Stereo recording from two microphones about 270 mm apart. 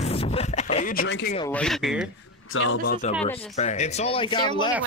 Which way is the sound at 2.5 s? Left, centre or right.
Left.